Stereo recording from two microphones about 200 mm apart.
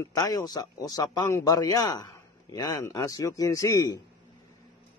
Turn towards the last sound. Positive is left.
turn(degrees=15)  # may be behind; listen again after turning